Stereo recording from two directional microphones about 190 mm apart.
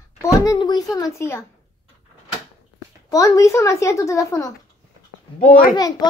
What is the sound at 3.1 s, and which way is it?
A woman's voice, 15° left (ahead or behind).